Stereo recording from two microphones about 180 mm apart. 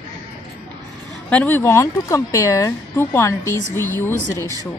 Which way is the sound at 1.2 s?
10° left (ahead or behind).